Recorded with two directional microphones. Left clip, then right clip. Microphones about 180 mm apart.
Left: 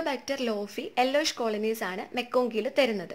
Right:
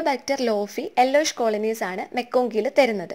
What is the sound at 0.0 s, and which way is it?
A woman's voice, 25° right (ahead or behind).